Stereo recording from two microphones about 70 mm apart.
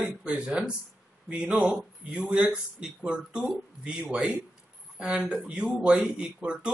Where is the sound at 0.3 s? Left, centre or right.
Centre.